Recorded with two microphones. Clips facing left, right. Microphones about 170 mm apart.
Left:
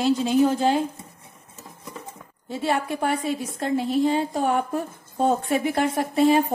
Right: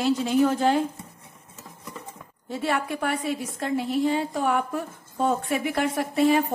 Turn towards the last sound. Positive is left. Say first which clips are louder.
# left 2 dB
turn(degrees=30)  # may be behind; listen again after turning